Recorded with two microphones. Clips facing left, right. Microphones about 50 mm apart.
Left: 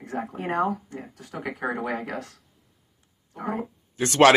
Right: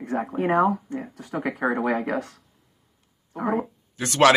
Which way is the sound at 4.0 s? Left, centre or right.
Centre.